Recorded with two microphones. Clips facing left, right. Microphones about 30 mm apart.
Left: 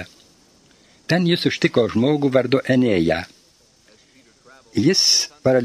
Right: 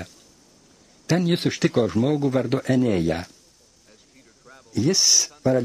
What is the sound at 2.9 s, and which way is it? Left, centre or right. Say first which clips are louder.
Speech: left 4 dB; left.